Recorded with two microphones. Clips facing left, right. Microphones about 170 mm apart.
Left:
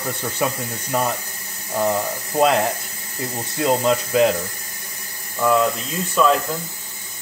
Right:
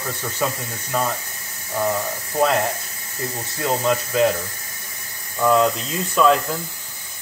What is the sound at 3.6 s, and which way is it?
Speech, 15° left (ahead or behind).